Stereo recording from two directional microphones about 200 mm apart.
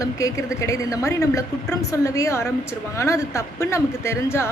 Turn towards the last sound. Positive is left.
turn(degrees=15)  # may be behind; listen again after turning